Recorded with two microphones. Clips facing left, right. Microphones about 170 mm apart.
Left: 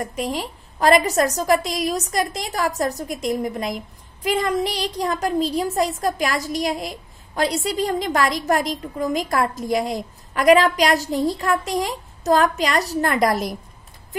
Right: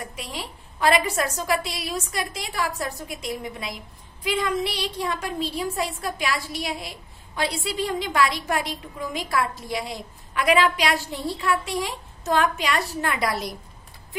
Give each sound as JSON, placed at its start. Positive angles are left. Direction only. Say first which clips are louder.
{"t": 0.0, "sound": "a woman's voice", "louder": "left 9 dB", "side_deg": 45}